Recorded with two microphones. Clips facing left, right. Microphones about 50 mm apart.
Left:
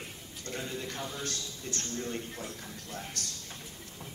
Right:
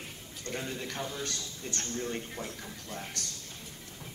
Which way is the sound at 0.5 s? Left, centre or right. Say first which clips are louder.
Right 1 dB; right.